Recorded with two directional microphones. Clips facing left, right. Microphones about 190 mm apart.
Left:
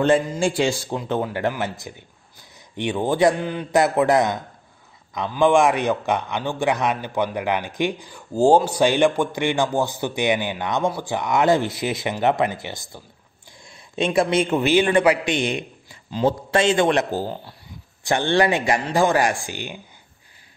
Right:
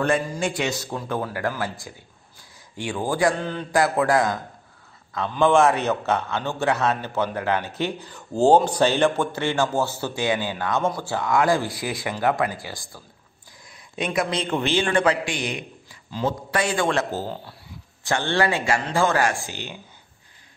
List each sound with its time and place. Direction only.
0.0 s speech: 25° left (ahead or behind)
14.6 s speech: 15° left (ahead or behind)